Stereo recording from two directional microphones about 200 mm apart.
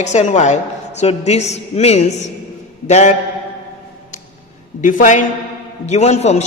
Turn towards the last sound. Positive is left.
turn(degrees=35)  # may be behind; listen again after turning